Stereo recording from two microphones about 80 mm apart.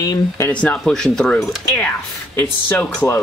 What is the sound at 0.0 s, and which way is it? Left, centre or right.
Speech, left.